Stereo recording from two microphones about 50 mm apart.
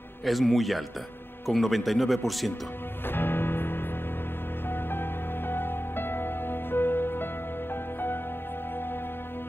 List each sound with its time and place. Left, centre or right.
0.2 s speech: centre
3.1 s music: left
5.5 s music: left